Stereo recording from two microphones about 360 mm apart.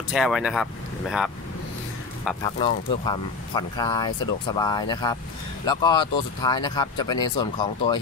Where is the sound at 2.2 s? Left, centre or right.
Centre.